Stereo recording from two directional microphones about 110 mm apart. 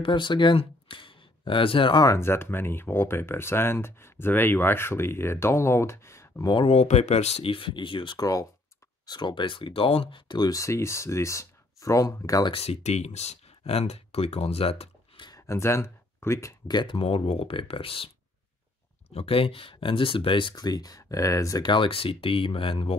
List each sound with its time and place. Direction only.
0.0 s speech: 45° left (ahead or behind)
2.0 s speech: 25° left (ahead or behind)
6.7 s speech: 75° left (ahead or behind); by 12.4 s 30° left (ahead or behind)
12.4 s speech: 65° left (ahead or behind)
15.2 s speech: 30° left (ahead or behind)
16.6 s speech: 40° left (ahead or behind)
16.9 s speech: 60° left (ahead or behind)
20.5 s speech: 35° left (ahead or behind)
21.6 s speech: 50° left (ahead or behind)